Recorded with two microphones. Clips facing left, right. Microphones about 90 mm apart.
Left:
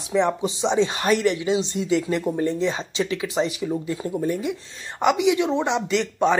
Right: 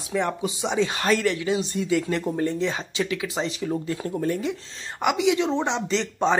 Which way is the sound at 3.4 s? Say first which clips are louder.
Left 5 dB; 15° left (ahead or behind).